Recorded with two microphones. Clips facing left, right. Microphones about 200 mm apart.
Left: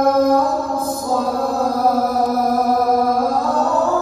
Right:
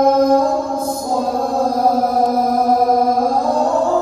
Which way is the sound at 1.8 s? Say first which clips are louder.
Right 1 dB; centre (ahead or behind).